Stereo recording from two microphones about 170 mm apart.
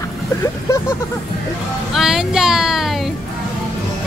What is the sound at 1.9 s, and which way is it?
Music, centre (ahead or behind).